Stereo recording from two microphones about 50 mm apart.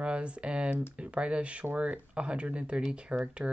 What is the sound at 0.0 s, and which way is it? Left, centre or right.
Speech, right.